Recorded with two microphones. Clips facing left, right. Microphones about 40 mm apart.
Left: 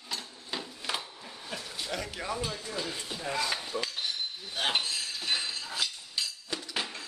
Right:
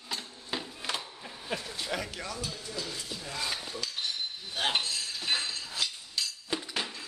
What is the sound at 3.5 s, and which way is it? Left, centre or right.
Cutlery, centre.